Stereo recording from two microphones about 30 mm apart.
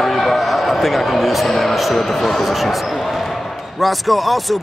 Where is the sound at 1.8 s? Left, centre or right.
Centre.